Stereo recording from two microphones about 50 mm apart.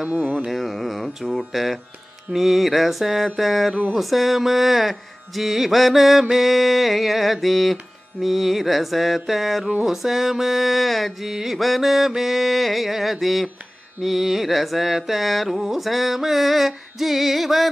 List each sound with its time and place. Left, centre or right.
0.0 s carnatic music: right
0.5 s mantra: centre